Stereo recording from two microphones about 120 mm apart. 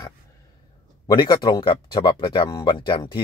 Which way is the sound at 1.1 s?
40° left (ahead or behind).